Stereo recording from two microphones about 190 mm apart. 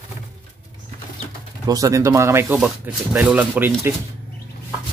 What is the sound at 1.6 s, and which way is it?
Speech, 20° right (ahead or behind).